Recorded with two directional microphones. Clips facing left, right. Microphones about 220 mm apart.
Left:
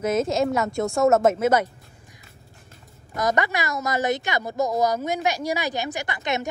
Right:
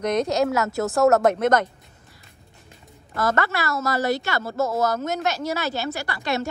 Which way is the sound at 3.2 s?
15° left (ahead or behind).